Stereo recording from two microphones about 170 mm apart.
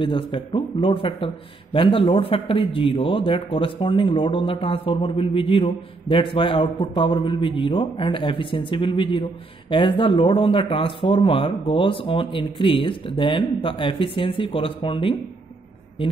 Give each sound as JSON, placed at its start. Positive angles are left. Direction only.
{"t": 0.0, "sound": "a man's voice", "side_deg": 30}